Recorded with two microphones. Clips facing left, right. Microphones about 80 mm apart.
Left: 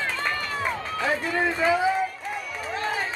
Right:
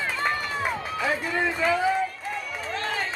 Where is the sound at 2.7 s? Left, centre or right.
Centre.